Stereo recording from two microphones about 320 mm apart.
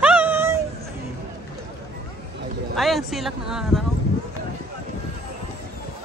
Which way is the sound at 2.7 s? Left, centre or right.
Centre.